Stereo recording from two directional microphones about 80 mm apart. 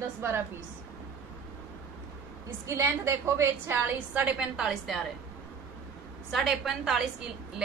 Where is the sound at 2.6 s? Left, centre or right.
Right.